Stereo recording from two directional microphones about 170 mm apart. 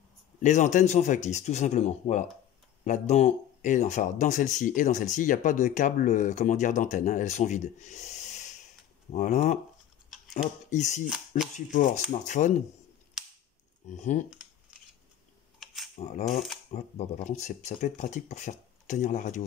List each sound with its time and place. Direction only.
0.4 s speech: 45° left (ahead or behind)
10.0 s scissors: centre (ahead or behind)
10.3 s speech: 45° left (ahead or behind)
13.2 s cap gun: 5° right (ahead or behind)
13.8 s speech: 45° left (ahead or behind)
15.6 s camera: centre (ahead or behind)
16.0 s speech: 45° left (ahead or behind)